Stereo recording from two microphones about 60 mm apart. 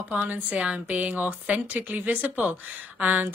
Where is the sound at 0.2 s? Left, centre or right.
Right.